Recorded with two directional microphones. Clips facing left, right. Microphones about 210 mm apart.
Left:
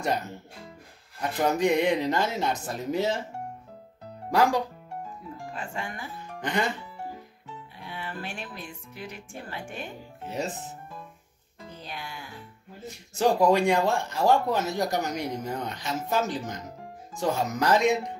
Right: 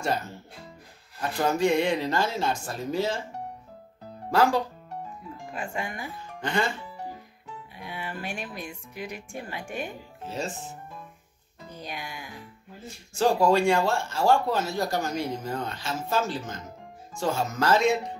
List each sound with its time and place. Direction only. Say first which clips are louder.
0.0 s speech: even; 20° left (ahead or behind)
1.4 s speech: even; 20° left (ahead or behind)
4.3 s speech: right 1 dB; 15° left (ahead or behind)
5.5 s speech: right 3 dB; 10° right (ahead or behind)
6.4 s speech: right 1 dB; 20° left (ahead or behind)
7.7 s speech: right 1 dB; 15° right (ahead or behind)
10.2 s speech: left 1 dB; 20° left (ahead or behind)
11.8 s speech: right 2 dB; 15° right (ahead or behind)
12.8 s speech: even; 20° left (ahead or behind)